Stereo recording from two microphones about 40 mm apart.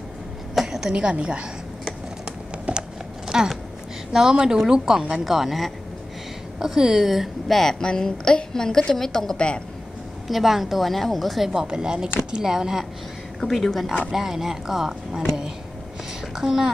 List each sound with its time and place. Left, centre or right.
0.7 s a sound: centre
1.0 s speech: right
2.2 s typing: right
3.3 s a sound: centre
4.1 s a woman's voice: centre
7.5 s a woman's voice: centre
10.2 s a woman's voice: centre
11.6 s speech: right
13.4 s a woman's voice: centre
14.1 s speech: centre
16.3 s speech: centre